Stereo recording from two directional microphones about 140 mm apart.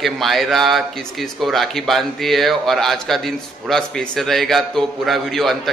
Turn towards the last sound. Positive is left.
turn(degrees=0)  # may be behind; listen again after turning